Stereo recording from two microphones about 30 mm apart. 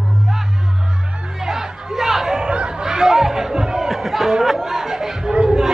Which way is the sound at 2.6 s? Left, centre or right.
Right.